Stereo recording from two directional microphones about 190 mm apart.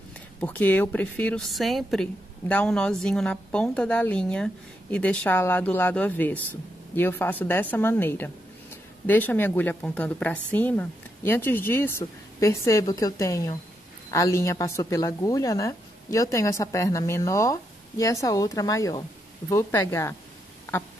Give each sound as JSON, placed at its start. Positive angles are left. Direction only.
{"t": 0.4, "sound": "a woman's voice", "side_deg": 10}